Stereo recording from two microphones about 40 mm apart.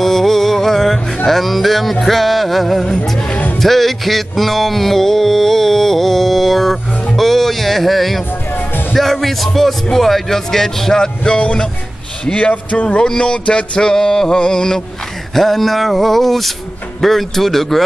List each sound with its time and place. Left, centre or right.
0.0 s music: centre
9.9 s speech: centre; by 13.7 s left
13.7 s speech: centre
15.3 s music: centre
17.0 s speech: centre